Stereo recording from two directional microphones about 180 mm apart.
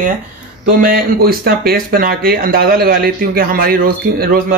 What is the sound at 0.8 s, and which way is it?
Speech, 55° right (ahead or behind).